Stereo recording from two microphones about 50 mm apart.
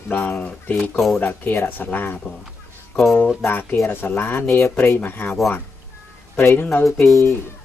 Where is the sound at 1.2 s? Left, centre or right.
Left.